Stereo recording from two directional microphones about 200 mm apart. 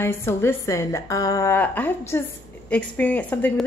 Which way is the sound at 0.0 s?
10° left (ahead or behind).